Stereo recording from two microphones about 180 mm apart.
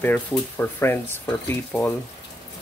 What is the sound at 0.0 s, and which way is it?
Speech, 10° left (ahead or behind).